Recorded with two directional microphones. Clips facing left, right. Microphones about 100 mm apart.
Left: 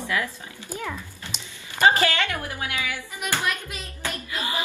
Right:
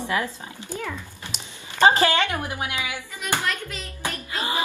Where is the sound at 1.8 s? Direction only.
25° right (ahead or behind).